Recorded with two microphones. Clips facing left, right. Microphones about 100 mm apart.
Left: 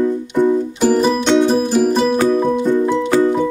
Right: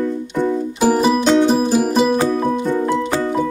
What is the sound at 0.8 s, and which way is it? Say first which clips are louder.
Music: right 1 dB; 10° right (ahead or behind).